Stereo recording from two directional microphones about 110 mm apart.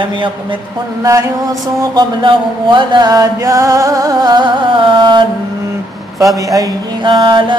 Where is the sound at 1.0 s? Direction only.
30° right (ahead or behind).